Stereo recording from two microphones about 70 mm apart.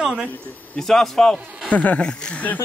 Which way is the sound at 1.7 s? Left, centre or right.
Left.